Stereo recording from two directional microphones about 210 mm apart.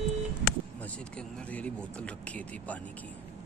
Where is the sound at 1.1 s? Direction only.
5° left (ahead or behind).